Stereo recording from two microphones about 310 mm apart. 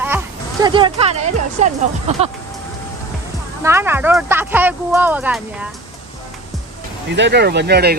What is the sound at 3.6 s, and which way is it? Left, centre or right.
Speech, centre.